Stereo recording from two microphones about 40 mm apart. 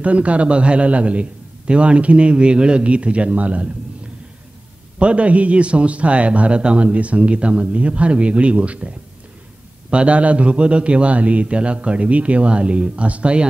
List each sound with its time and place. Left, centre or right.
0.0 s a man's voice: right
4.9 s a man's voice: right